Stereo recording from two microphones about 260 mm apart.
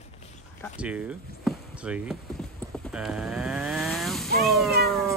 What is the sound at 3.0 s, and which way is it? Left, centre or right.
Vehicle, centre.